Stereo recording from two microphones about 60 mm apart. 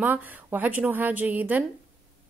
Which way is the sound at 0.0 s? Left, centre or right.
Right.